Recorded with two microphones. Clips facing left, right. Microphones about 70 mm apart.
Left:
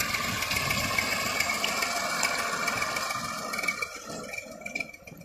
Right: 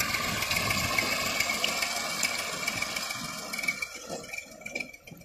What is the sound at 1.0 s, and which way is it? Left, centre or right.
Engine, centre.